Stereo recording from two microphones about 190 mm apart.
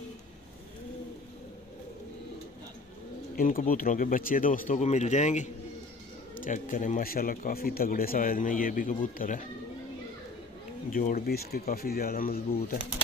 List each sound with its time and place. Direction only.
3.3 s speech: 50° left (ahead or behind)
10.9 s speech: 45° left (ahead or behind)